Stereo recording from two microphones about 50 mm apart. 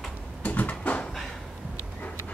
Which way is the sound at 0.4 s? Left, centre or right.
Left.